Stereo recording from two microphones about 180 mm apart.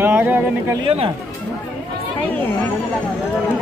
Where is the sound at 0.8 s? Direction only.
30° right (ahead or behind).